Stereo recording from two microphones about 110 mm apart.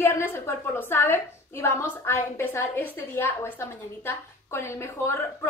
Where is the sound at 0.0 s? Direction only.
20° left (ahead or behind).